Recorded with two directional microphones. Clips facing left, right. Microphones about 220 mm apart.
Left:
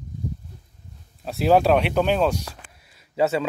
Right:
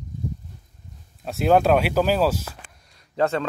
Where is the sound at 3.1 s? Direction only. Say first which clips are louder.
Left 1 dB; 5° left (ahead or behind).